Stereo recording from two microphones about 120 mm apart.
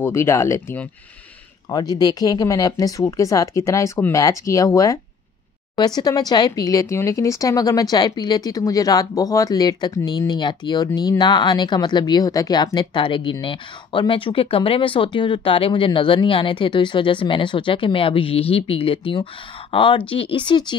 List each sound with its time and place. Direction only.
0.0 s speech: 20° left (ahead or behind)
1.7 s speech: 35° left (ahead or behind)